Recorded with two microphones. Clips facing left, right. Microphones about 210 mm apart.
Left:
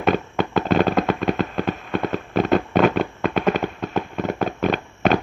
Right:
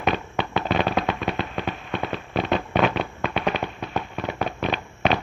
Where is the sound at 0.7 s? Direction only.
45° left (ahead or behind).